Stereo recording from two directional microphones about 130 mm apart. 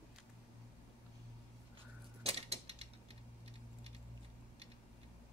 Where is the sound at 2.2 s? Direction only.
50° right (ahead or behind).